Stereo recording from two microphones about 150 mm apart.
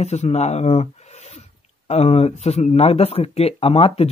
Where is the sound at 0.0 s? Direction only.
45° left (ahead or behind).